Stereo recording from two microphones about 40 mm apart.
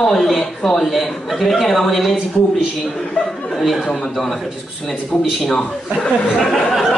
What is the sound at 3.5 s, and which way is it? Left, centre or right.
A man's voice, centre.